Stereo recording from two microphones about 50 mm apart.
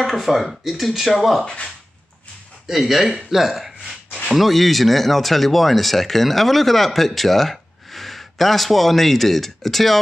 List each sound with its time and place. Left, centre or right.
0.0 s speech: centre
1.4 s speech: centre
2.6 s speech: centre